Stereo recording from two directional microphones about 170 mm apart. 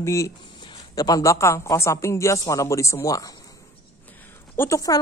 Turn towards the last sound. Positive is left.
turn(degrees=20)  # may be behind; listen again after turning